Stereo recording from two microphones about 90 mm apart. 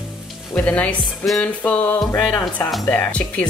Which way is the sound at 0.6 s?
15° left (ahead or behind).